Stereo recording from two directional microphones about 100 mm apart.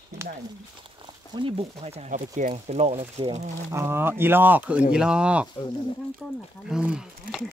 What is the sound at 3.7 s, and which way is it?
Speech, 25° right (ahead or behind).